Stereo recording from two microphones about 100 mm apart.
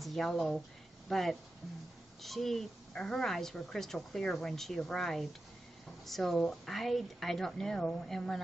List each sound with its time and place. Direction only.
0.0 s a woman's voice: centre (ahead or behind)